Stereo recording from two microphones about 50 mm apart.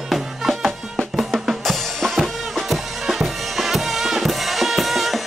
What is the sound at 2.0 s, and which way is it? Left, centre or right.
Music, centre.